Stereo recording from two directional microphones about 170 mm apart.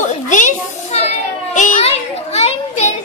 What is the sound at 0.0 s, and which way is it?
Children playing, 45° left (ahead or behind).